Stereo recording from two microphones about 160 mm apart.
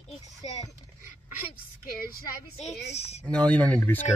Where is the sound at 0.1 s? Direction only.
45° left (ahead or behind).